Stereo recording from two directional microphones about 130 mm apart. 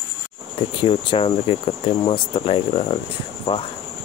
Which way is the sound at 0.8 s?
40° left (ahead or behind).